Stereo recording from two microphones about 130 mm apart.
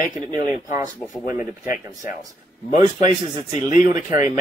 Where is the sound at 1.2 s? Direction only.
90° left.